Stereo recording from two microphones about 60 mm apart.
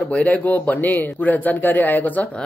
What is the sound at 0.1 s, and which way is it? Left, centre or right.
Speech, left.